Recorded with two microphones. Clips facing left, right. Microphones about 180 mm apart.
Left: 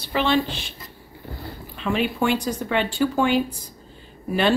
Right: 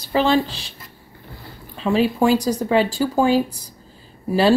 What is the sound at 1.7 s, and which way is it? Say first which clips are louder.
Speech: right 5 dB; 35° right (ahead or behind).